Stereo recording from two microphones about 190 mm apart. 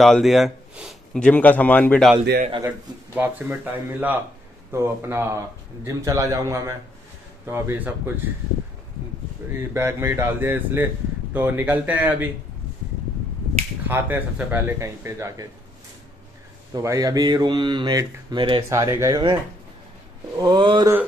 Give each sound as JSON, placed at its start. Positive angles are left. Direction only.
{"t": 0.0, "sound": "speech", "side_deg": 0}
{"t": 3.2, "sound": "speech", "side_deg": -10}
{"t": 9.4, "sound": "speech", "side_deg": -10}
{"t": 13.8, "sound": "speech", "side_deg": -10}
{"t": 16.7, "sound": "speech", "side_deg": -15}